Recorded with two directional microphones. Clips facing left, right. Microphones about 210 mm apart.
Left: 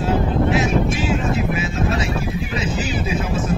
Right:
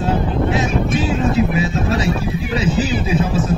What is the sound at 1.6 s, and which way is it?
A man's voice, 35° right (ahead or behind).